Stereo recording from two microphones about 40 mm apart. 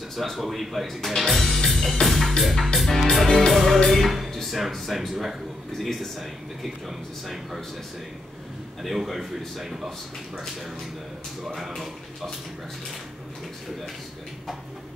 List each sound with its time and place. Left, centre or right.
0.1 s speech: centre
3.3 s music: centre
3.5 s music: centre
4.6 s speech: centre
8.8 s speech: centre
9.8 s speech: centre
11.4 s speech: centre